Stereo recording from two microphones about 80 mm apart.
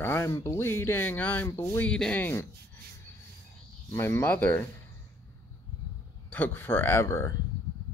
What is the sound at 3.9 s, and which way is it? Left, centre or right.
Speech, left.